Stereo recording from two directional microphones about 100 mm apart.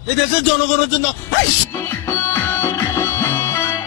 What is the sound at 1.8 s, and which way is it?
Music, 25° left (ahead or behind).